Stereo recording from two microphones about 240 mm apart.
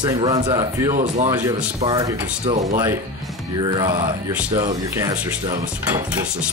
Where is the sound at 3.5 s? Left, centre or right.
Centre.